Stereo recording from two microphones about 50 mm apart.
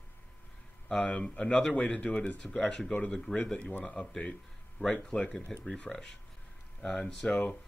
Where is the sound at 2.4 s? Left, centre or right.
Centre.